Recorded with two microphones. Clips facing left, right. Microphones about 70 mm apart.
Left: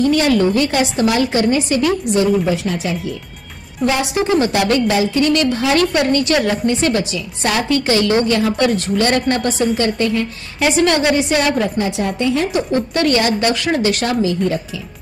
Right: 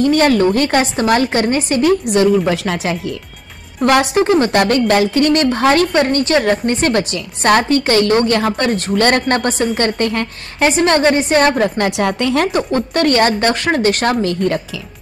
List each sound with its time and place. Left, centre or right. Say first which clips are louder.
0.0 s a woman's voice: right 2 dB; right
3.8 s a woman's voice: right 5 dB; right
10.8 s a woman's voice: right 1 dB; right
11.8 s speech: right 2 dB; right
12.5 s a woman's voice: right 1 dB; right